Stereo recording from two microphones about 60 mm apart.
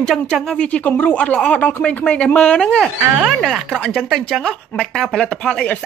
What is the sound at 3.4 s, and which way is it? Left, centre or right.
Speech, centre.